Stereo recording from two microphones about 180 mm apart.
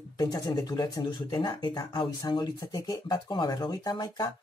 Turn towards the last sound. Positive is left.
turn(degrees=20)  # may be behind; listen again after turning